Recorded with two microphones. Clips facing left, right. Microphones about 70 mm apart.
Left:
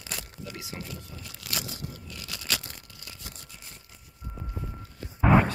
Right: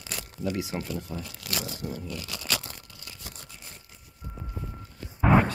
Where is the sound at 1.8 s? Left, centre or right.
Right.